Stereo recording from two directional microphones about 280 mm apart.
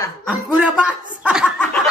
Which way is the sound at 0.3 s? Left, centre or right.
Centre.